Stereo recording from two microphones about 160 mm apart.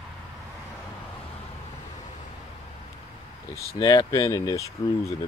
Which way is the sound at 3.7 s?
25° left (ahead or behind).